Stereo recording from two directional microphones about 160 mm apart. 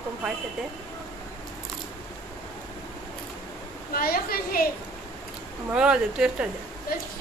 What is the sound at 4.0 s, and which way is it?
Speech, 70° left (ahead or behind).